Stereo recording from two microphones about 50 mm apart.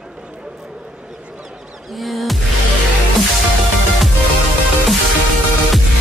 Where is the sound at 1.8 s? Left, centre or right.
Centre.